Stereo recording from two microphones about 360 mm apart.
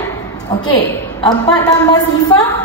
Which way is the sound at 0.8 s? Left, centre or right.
Centre.